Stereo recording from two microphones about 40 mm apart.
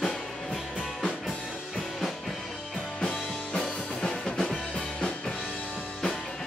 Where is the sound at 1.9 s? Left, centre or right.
Centre.